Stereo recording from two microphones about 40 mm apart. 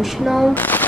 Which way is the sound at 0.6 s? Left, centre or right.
Left.